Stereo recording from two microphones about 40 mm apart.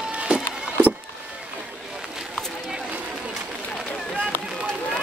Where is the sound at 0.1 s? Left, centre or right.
Right.